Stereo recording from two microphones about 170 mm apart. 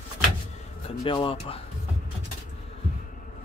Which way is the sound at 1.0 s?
30° left (ahead or behind).